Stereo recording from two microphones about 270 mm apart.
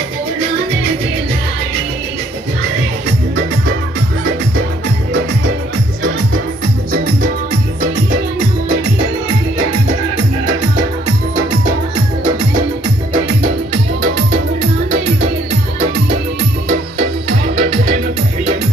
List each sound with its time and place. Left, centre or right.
17.6 s music: right